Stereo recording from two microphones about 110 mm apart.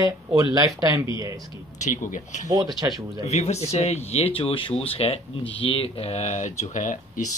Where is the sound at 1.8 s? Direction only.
90° left.